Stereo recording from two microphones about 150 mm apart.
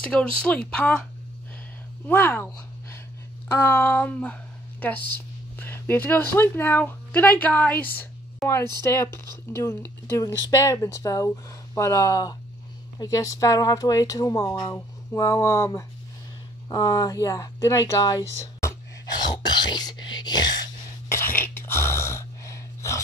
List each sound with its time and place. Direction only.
0.0 s speech: 10° left (ahead or behind)
2.0 s a woman's voice: 15° left (ahead or behind)
18.4 s a sound: 20° left (ahead or behind)
19.2 s speech: 30° left (ahead or behind)
21.1 s gasp: 15° left (ahead or behind)